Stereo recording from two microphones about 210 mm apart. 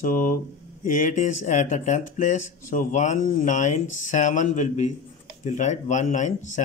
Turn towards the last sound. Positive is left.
turn(degrees=35)  # may be behind; listen again after turning